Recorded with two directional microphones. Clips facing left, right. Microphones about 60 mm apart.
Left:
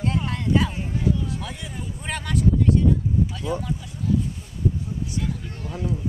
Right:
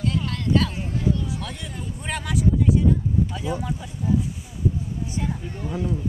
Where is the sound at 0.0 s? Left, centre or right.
Left; by 2.8 s centre.